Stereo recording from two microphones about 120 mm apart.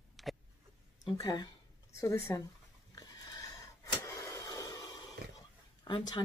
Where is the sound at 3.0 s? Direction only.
30° left (ahead or behind).